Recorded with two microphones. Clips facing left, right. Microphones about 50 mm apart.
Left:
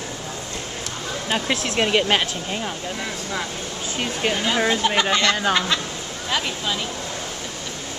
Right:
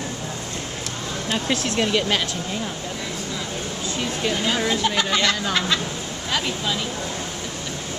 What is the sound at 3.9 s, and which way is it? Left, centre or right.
Speech, left.